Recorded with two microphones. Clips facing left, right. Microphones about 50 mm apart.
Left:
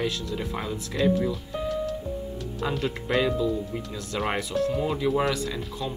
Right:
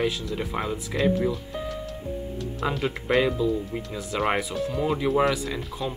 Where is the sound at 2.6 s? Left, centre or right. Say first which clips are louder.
Right 1 dB; centre.